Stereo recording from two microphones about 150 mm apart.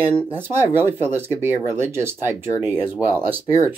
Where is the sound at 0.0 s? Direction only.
40° right (ahead or behind).